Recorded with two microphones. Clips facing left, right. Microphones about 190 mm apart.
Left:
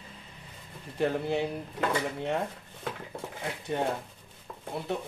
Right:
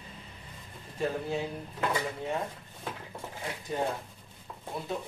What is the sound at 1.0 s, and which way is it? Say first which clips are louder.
Speech: left 4 dB; 70° left (ahead or behind).